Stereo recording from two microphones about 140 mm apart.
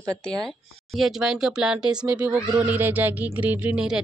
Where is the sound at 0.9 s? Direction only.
Centre (ahead or behind).